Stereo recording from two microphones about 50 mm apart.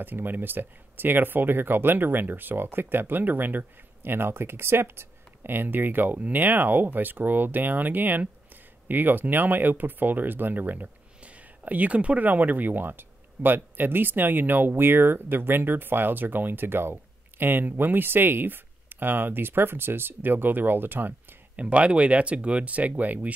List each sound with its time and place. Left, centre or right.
0.0 s speech: right
21.5 s speech: right